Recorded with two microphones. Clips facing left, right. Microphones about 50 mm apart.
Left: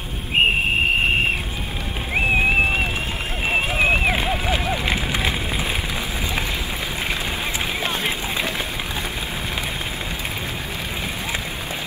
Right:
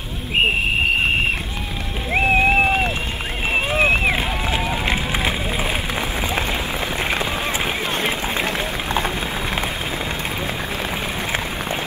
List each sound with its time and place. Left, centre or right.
2.1 s a sound: centre
3.5 s run: centre
7.8 s run: right